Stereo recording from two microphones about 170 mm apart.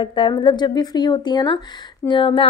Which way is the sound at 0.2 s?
30° left (ahead or behind).